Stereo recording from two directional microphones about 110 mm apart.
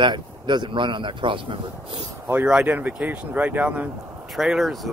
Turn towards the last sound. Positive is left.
turn(degrees=0)  # may be behind; listen again after turning